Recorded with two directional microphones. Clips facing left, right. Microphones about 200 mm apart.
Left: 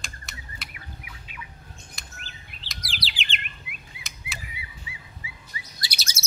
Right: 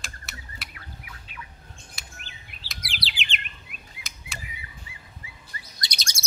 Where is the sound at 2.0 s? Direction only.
Centre (ahead or behind).